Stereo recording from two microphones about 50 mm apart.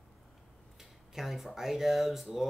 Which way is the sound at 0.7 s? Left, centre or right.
Centre.